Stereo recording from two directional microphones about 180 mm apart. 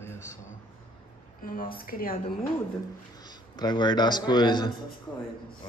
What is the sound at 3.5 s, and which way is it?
A man's voice, 25° left (ahead or behind).